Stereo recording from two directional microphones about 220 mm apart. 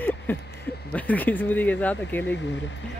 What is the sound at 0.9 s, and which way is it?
Speech, 5° left (ahead or behind).